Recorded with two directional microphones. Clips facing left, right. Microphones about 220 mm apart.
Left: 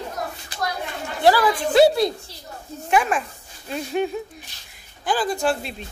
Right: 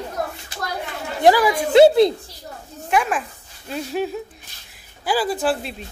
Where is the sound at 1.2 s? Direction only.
15° right (ahead or behind).